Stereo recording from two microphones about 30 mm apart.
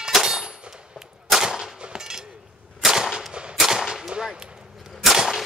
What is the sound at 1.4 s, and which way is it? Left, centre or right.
Gunshot, centre.